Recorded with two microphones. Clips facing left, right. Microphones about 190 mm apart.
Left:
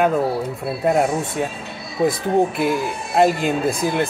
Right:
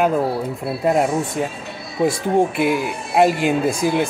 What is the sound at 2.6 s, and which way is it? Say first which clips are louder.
Speech: right 1 dB; 10° right (ahead or behind).